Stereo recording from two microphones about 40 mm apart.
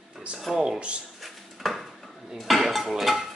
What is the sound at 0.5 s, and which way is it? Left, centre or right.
Speech, centre.